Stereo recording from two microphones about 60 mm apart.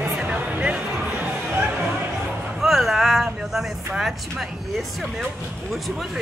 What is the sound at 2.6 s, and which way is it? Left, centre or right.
Speech, centre.